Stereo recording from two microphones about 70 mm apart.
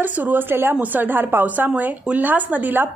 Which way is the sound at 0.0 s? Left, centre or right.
Right.